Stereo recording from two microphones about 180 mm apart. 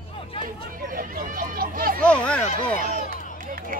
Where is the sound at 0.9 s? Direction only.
50° right (ahead or behind).